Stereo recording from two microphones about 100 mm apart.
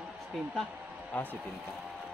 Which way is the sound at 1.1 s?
15° left (ahead or behind).